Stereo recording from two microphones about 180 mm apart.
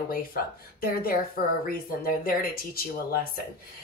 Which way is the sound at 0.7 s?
55° left (ahead or behind).